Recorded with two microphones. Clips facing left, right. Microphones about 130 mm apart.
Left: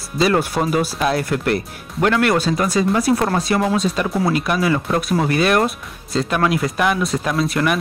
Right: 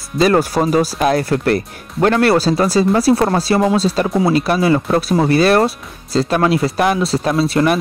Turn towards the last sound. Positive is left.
turn(degrees=-30)  # may be behind; listen again after turning